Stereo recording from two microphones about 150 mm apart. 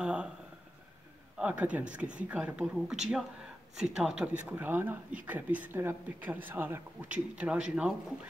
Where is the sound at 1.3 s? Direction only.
10° right (ahead or behind).